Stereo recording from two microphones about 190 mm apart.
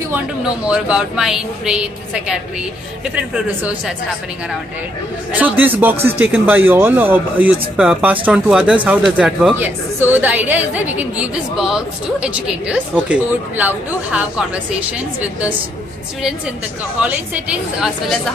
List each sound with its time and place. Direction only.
0.7 s a woman's voice: 5° right (ahead or behind)
5.3 s speech: 10° right (ahead or behind)
17.0 s speech: 5° right (ahead or behind)